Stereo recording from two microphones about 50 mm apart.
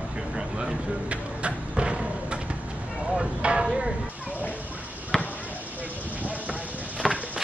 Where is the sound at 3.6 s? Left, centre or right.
Centre.